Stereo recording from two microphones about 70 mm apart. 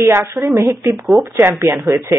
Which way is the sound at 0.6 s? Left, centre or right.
Right.